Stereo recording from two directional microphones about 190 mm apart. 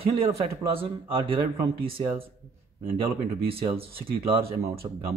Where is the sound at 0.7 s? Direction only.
30° right (ahead or behind).